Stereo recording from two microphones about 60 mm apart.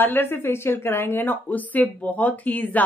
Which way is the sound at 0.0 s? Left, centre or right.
Left.